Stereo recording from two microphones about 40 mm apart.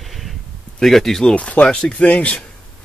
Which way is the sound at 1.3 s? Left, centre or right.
Left.